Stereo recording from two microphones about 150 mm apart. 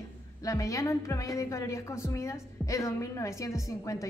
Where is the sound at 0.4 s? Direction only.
20° left (ahead or behind).